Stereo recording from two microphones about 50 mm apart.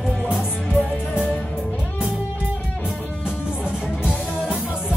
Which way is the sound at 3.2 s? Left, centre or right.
Centre.